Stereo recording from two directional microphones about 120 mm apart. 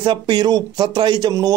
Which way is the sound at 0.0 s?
40° right (ahead or behind).